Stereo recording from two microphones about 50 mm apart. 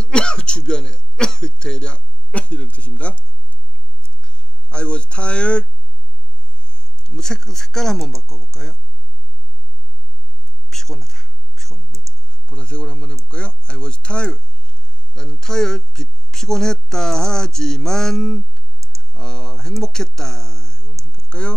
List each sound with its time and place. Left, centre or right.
0.0 s throat clearing: centre
4.2 s a sound: centre
6.6 s speech: left
10.7 s a sound: centre
12.4 s speech: centre
18.8 s clicking: right
19.1 s speech: centre